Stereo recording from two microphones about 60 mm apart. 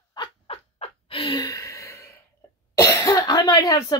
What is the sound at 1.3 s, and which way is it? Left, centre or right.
Gasp, left.